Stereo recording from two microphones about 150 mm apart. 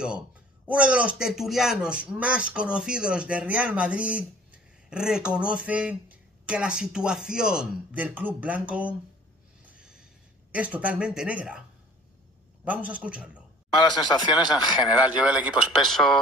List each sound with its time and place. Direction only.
0.7 s speech: 10° right (ahead or behind)
9.7 s a sound: 5° right (ahead or behind)
10.5 s speech: 10° right (ahead or behind)
12.6 s speech: 10° right (ahead or behind)
13.8 s speech: 30° left (ahead or behind)
14.7 s speech: 10° right (ahead or behind)
15.9 s speech: centre (ahead or behind)